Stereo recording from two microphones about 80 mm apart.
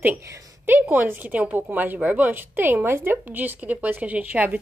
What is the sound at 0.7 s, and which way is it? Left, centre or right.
Speech, right.